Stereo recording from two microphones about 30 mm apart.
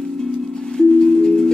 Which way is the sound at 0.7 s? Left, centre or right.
Centre.